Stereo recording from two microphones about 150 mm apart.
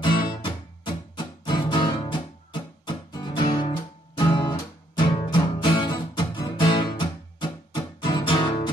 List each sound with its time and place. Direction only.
0.0 s music: 35° left (ahead or behind)